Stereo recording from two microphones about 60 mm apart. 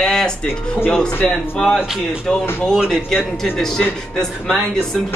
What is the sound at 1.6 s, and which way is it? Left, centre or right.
Speech, centre.